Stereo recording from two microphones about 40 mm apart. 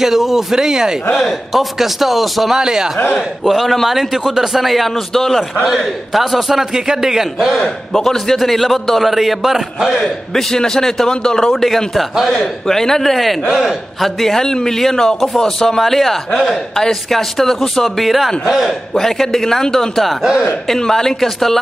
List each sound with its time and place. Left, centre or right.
0.0 s a man's voice: centre
1.5 s a man's voice: centre
2.5 s a man's voice: centre
3.4 s a man's voice: centre
7.5 s a man's voice: centre
9.9 s a man's voice: centre
11.5 s a man's voice: centre
12.6 s a man's voice: centre
20.2 s speech: right
20.6 s a man's voice: centre